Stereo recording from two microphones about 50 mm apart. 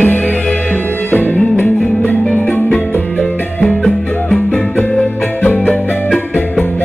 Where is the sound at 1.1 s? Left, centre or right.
Left.